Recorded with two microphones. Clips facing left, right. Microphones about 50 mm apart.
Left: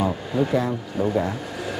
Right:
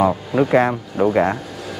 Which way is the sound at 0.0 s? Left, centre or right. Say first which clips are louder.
Right 6 dB; right.